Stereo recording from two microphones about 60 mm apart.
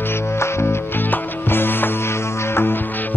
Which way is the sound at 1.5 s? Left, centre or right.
Left.